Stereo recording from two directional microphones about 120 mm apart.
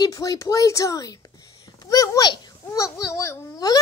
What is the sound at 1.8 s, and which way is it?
Babbling, 30° left (ahead or behind).